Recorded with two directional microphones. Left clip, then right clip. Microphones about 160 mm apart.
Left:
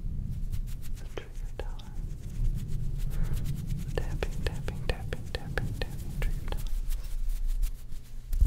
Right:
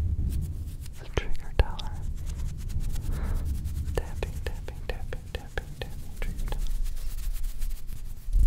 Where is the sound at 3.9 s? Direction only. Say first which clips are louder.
Right 2 dB; 15° right (ahead or behind).